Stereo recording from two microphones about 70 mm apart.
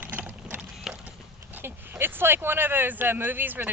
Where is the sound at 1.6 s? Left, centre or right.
Right.